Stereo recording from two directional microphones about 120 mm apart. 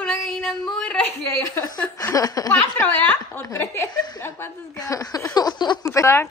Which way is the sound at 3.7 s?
20° left (ahead or behind).